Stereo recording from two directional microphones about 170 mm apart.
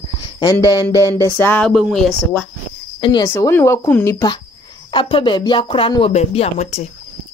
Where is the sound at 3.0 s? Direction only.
25° left (ahead or behind).